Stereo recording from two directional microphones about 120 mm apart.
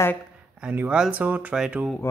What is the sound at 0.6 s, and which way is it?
Speech, 10° right (ahead or behind).